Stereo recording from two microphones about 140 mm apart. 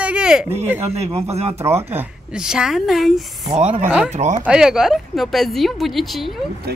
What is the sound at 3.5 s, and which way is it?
Speech, 55° right (ahead or behind).